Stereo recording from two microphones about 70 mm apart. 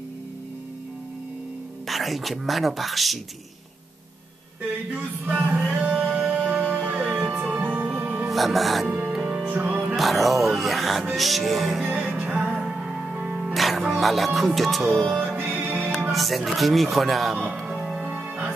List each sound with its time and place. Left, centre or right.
1.9 s speech: centre
5.0 s music: right
8.3 s speech: centre
8.8 s music: centre
9.5 s music: right
9.9 s speech: centre
11.8 s music: right
13.1 s music: right
13.5 s music: centre
15.2 s music: right
16.1 s speech: centre
17.6 s music: centre